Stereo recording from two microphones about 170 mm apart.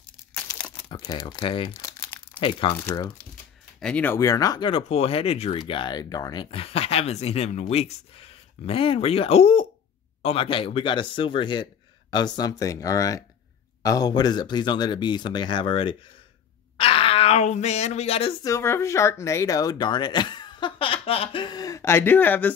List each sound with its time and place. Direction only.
0.8 s speech: 25° left (ahead or behind)
3.8 s speech: 10° left (ahead or behind); by 16.0 s 30° left (ahead or behind)
16.7 s a sound: 35° left (ahead or behind)
18.4 s speech: 15° left (ahead or behind)